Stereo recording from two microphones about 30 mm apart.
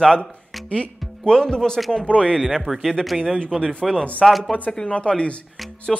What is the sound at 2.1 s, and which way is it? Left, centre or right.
Speech, left.